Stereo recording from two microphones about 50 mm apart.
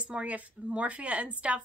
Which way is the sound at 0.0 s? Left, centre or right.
Right.